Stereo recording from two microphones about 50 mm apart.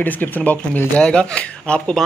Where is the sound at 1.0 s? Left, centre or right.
Left.